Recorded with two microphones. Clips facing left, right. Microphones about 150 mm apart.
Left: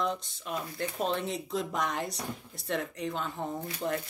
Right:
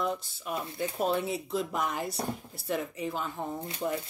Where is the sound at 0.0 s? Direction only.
5° right (ahead or behind).